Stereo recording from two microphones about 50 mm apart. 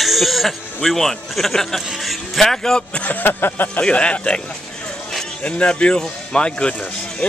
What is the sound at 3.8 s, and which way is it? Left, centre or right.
Speech, left.